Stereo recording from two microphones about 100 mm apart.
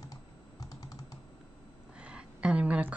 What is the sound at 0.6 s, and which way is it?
Typing, 40° left (ahead or behind).